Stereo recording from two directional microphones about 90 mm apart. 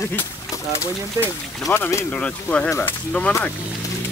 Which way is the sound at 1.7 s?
20° left (ahead or behind).